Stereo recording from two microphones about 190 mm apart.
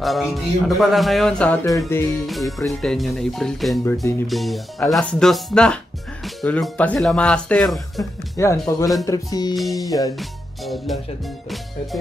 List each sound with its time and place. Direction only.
0.0 s a man's voice: centre (ahead or behind)
2.2 s a man's voice: centre (ahead or behind)
3.8 s speech: 15° left (ahead or behind)
4.3 s a man's voice: centre (ahead or behind)
8.4 s speech: 15° left (ahead or behind)
9.0 s music: 20° left (ahead or behind)
9.6 s a man's voice: centre (ahead or behind)
9.8 s music: 20° left (ahead or behind)
10.1 s speech: centre (ahead or behind)